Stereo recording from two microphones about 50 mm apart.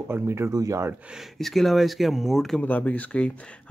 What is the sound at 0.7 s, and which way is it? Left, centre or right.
Speech, right.